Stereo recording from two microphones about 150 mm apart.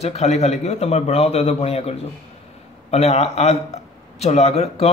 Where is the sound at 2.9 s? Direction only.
45° left (ahead or behind).